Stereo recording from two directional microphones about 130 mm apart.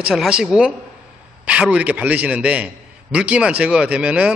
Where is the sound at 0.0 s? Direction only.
5° right (ahead or behind).